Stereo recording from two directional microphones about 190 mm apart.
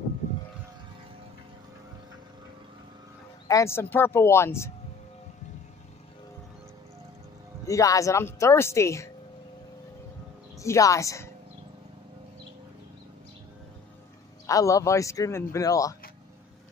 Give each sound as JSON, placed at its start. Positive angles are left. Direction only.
{"t": 3.4, "sound": "speech", "side_deg": 15}
{"t": 7.6, "sound": "speech", "side_deg": 15}
{"t": 10.6, "sound": "speech", "side_deg": 15}
{"t": 14.4, "sound": "speech", "side_deg": 15}